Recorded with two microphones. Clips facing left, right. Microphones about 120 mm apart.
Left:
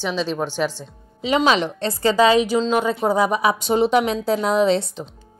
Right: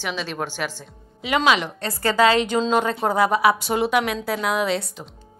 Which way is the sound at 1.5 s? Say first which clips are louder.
Left 2 dB; 30° left (ahead or behind).